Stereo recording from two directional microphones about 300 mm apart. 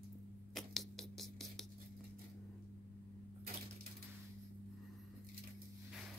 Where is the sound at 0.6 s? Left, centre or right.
Centre.